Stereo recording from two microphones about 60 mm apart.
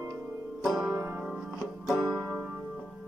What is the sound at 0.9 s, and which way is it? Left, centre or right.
Music, right.